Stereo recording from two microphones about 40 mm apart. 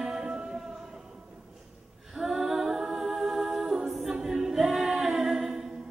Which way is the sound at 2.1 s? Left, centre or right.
Centre.